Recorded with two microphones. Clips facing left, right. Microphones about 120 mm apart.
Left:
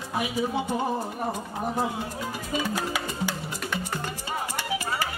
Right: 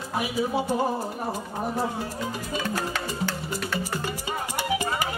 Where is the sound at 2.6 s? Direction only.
10° left (ahead or behind).